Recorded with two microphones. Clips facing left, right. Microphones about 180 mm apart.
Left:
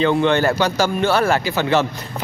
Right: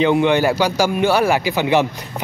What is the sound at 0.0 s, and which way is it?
Speech, 15° right (ahead or behind).